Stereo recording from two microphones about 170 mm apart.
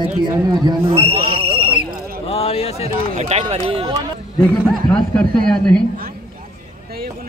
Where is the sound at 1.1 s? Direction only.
60° right (ahead or behind).